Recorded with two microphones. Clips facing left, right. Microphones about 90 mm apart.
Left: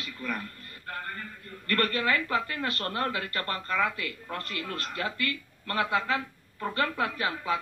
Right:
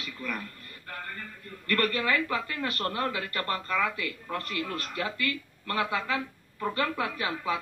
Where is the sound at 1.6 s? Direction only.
35° left (ahead or behind).